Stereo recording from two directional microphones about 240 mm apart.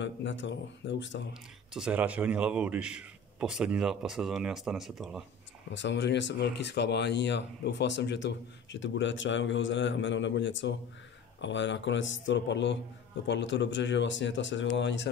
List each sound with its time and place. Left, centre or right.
0.0 s speech: left
1.7 s a man's voice: centre
5.7 s speech: left